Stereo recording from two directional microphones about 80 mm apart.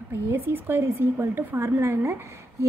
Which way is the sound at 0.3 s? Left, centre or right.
Right.